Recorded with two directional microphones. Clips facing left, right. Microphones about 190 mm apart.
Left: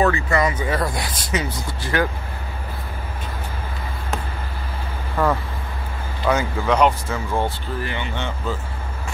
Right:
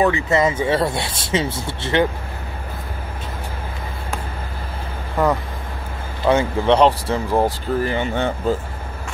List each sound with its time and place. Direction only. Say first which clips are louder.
0.0 s speech: right 2 dB; 20° right (ahead or behind)
5.1 s speech: right 2 dB; 15° right (ahead or behind)
6.2 s speech: right 4 dB; 30° right (ahead or behind); by 8.5 s 45° right (ahead or behind)